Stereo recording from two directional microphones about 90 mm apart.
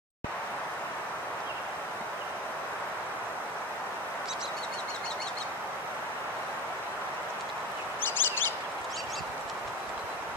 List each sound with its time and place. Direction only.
8.0 s fowl: 25° left (ahead or behind)